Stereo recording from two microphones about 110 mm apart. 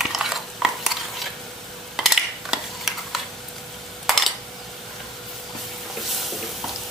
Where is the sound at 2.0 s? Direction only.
5° right (ahead or behind).